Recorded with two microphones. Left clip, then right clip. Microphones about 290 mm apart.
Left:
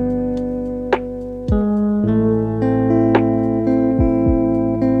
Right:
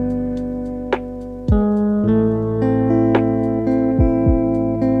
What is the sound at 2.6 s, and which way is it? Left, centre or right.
Music, right.